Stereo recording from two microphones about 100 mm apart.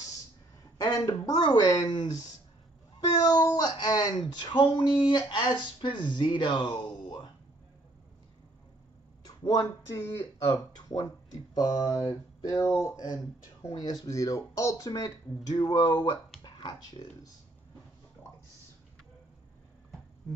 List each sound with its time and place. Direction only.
0.7 s speech: 40° left (ahead or behind)
3.3 s speech: 45° left (ahead or behind)
9.2 s a sound: 40° left (ahead or behind)
9.9 s speech: 25° left (ahead or behind)
10.7 s speech: 40° left (ahead or behind)
16.4 s a sound: 50° left (ahead or behind)
17.0 s speech: 40° left (ahead or behind)